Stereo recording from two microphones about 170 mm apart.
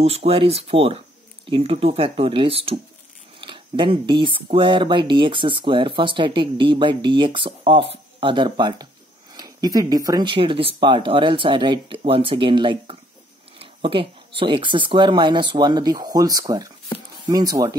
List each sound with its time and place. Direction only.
0.0 s speech: 35° right (ahead or behind); by 17.7 s 20° right (ahead or behind)